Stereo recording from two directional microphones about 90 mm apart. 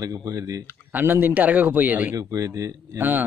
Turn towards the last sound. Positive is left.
turn(degrees=-20)  # may be behind; listen again after turning